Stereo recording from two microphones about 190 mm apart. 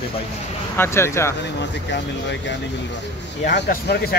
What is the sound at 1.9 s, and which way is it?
Speech, 70° left (ahead or behind).